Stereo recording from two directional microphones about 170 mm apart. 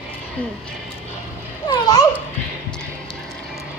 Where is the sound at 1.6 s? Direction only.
20° left (ahead or behind).